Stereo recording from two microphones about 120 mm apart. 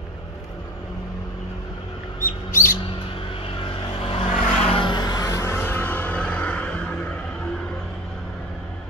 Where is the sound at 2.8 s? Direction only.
45° left (ahead or behind); by 7.1 s 5° left (ahead or behind).